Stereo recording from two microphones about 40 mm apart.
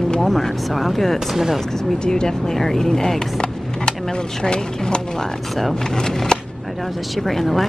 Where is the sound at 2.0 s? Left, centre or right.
Centre.